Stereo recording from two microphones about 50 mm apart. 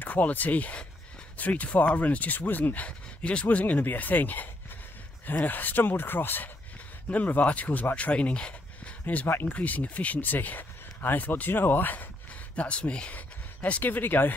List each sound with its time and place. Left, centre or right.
0.0 s speech: left
7.1 s speech: left
12.5 s speech: left